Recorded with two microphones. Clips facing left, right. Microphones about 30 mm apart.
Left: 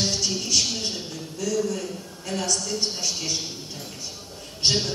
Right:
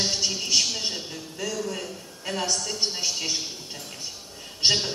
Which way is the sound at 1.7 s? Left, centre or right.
Right.